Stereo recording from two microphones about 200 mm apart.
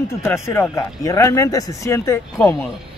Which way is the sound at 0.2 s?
10° left (ahead or behind).